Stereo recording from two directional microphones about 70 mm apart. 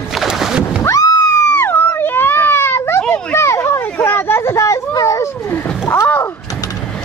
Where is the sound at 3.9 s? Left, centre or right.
Left.